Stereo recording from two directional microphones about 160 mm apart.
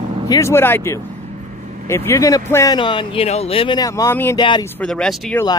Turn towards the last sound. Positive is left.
turn(degrees=5)  # may be behind; listen again after turning